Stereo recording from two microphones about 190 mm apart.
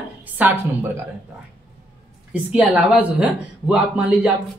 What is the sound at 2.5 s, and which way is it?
Speech, 5° right (ahead or behind).